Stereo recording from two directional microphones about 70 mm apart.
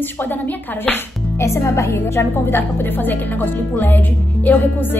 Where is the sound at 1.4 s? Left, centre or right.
Left.